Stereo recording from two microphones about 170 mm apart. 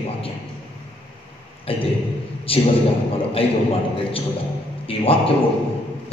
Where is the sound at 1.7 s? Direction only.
35° left (ahead or behind).